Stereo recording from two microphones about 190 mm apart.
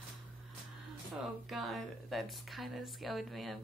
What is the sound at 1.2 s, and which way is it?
Speech, centre (ahead or behind).